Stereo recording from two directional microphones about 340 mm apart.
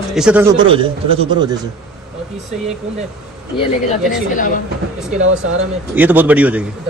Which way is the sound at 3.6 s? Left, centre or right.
Left.